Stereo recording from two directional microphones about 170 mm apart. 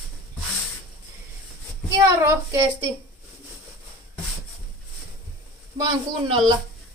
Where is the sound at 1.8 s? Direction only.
20° right (ahead or behind).